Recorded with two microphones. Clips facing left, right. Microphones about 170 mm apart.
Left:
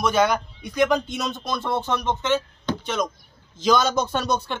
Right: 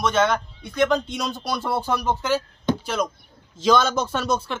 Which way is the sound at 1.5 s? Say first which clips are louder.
Right 1 dB; 10° right (ahead or behind).